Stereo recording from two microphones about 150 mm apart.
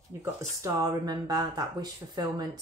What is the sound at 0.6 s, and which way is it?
Speech, 25° right (ahead or behind).